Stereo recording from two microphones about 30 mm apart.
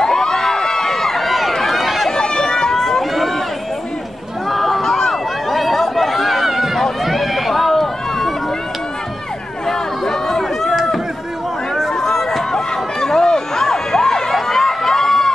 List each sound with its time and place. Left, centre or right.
0.0 s a sound: centre
1.5 s run: centre
1.8 s run: centre
2.0 s run: left
4.5 s a sound: centre
4.8 s chatter: centre
6.8 s run: centre
9.7 s chatter: centre
10.7 s run: centre
12.0 s run: centre